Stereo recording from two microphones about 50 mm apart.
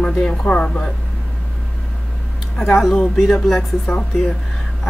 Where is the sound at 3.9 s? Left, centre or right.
Centre.